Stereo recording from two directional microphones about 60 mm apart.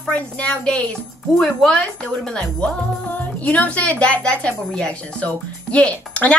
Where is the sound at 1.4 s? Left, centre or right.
Centre.